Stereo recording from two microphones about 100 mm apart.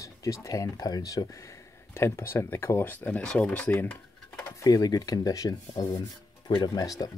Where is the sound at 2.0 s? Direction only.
25° left (ahead or behind).